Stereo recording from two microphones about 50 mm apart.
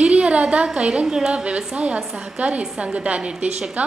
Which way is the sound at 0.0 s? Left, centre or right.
Right.